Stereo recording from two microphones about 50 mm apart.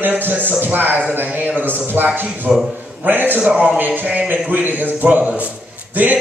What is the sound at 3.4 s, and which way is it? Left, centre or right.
Speech, right.